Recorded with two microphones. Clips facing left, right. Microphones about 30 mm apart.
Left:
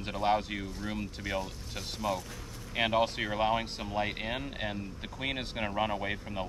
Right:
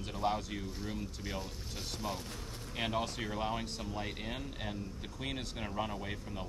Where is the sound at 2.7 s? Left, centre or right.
Left.